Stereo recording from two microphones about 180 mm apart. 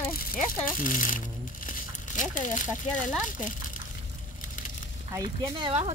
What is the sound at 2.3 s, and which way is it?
Speech, 45° left (ahead or behind).